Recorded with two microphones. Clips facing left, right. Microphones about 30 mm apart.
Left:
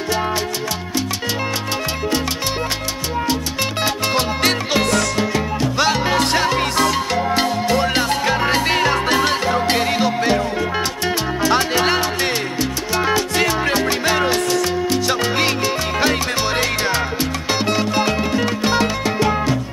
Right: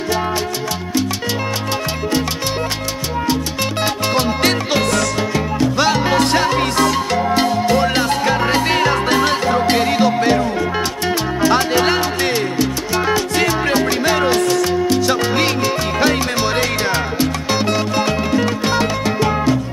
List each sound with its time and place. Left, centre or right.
3.8 s music: centre